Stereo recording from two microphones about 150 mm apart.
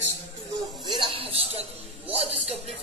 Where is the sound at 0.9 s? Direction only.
35° right (ahead or behind).